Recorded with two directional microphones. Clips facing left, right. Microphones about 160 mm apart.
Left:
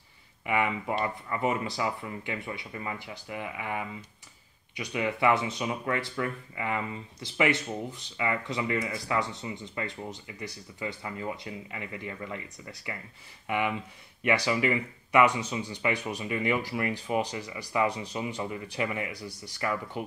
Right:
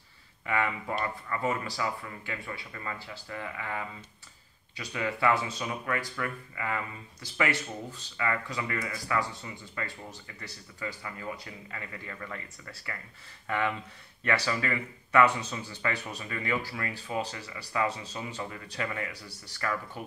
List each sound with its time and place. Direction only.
0.5 s speech: 20° left (ahead or behind)